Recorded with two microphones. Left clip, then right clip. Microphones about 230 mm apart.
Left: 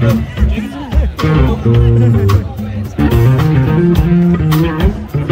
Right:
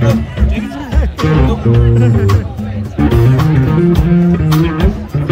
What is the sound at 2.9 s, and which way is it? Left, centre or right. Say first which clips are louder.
Music: right 1 dB; centre.